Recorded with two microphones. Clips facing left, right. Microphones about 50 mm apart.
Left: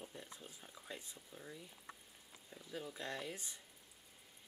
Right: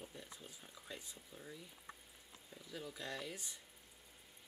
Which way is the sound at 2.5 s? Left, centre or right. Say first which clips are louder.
Left 2 dB; centre.